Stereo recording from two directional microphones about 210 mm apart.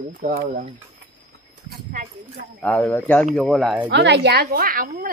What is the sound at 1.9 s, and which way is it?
Clip-clop, 40° right (ahead or behind).